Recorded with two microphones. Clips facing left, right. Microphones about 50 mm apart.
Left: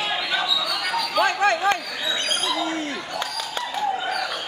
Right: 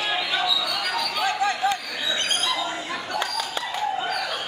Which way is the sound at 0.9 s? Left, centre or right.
Left.